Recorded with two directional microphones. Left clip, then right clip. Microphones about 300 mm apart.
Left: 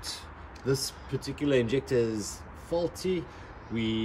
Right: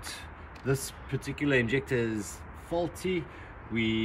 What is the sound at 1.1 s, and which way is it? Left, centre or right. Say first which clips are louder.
Speech: even; centre.